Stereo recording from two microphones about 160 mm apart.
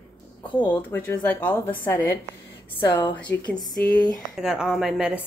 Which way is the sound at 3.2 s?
5° left (ahead or behind).